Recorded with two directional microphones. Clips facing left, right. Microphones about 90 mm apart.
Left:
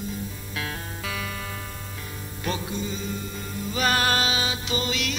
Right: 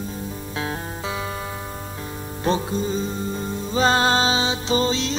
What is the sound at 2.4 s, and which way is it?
Music, 35° right (ahead or behind).